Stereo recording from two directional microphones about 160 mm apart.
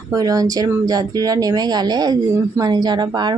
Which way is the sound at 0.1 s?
20° right (ahead or behind).